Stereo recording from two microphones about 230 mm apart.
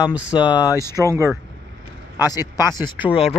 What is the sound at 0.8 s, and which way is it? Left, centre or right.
Speech, centre.